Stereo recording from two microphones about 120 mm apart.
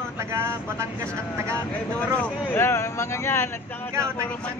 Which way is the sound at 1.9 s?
10° left (ahead or behind).